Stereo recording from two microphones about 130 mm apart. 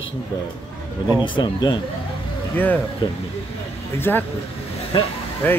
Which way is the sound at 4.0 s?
15° left (ahead or behind).